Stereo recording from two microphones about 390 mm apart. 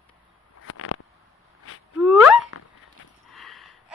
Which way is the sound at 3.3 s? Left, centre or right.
Centre.